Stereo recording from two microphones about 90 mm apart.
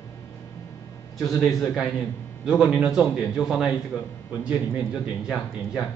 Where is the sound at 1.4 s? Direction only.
Centre (ahead or behind).